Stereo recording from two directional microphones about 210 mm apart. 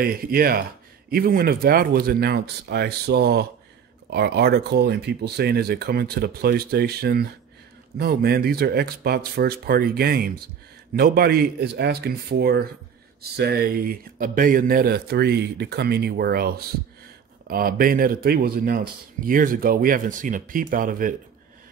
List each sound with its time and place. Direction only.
0.0 s speech: 45° right (ahead or behind)